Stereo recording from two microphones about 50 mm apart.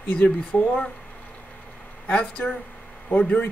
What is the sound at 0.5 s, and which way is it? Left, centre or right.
Speech, left.